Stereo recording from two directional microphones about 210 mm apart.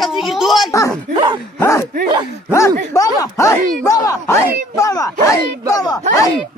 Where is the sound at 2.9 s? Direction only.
15° left (ahead or behind).